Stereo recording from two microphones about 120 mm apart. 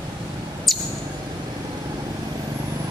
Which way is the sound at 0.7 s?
Centre (ahead or behind).